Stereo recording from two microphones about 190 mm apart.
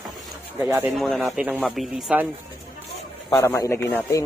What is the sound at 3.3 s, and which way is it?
Speech, 15° left (ahead or behind).